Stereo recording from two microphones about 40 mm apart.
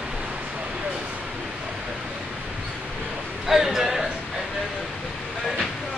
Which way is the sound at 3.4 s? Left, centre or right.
Centre.